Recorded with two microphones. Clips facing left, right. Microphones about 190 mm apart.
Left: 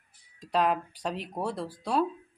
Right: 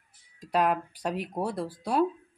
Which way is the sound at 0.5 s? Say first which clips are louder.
Right 1 dB; 5° right (ahead or behind).